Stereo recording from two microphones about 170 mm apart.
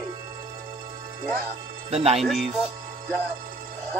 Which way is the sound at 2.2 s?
Centre (ahead or behind).